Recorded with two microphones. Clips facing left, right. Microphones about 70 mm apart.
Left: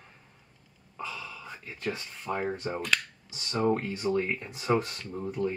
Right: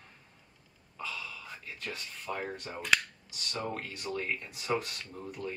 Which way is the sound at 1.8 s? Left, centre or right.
Left.